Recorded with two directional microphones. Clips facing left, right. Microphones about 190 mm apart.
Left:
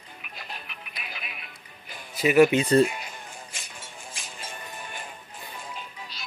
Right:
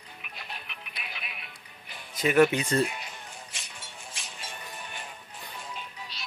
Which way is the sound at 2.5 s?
30° left (ahead or behind).